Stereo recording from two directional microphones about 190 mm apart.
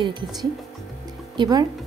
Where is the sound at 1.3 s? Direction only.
25° right (ahead or behind).